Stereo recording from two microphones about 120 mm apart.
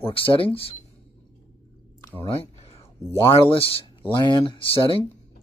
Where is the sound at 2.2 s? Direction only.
50° left (ahead or behind).